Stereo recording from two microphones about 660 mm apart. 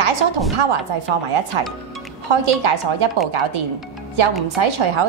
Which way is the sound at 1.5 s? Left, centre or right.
Right.